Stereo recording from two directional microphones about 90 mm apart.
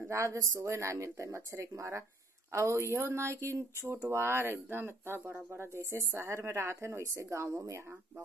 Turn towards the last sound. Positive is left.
turn(degrees=-35)  # may be behind; listen again after turning